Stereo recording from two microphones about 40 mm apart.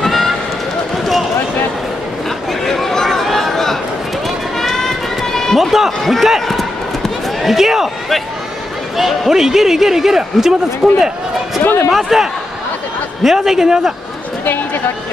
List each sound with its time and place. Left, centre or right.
0.0 s run: centre
2.6 s a sound: centre
4.6 s run: centre
5.6 s run: centre
5.9 s a man's voice: centre
7.4 s a man's voice: centre
8.9 s a man's voice: centre
11.6 s speech: left
12.0 s a man's voice: centre